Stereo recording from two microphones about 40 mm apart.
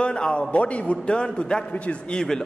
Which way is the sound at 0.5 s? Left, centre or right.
Left.